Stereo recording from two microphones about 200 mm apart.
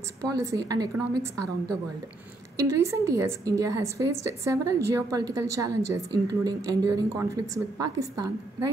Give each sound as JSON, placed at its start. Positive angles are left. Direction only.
{"t": 0.3, "sound": "a woman's voice", "side_deg": -15}
{"t": 2.5, "sound": "a woman's voice", "side_deg": -15}